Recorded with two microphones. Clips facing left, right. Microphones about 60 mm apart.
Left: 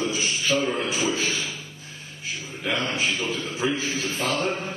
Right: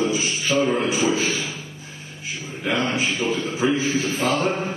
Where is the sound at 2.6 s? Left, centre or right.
Centre.